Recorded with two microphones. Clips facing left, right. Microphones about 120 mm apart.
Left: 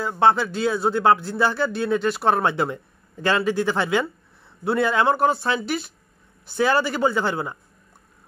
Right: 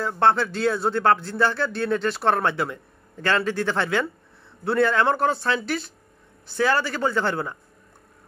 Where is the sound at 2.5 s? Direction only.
20° left (ahead or behind).